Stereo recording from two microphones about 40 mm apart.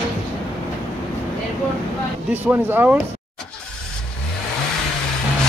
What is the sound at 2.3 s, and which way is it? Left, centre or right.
Speech, right.